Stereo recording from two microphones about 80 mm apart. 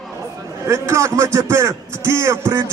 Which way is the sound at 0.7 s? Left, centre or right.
Right.